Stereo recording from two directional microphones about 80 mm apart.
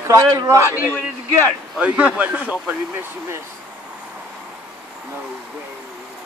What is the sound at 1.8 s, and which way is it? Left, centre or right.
Speech, centre.